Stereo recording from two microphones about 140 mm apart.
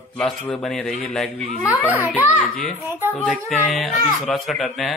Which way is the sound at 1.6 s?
15° left (ahead or behind).